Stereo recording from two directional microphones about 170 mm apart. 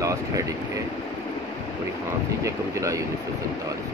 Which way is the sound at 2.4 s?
20° right (ahead or behind).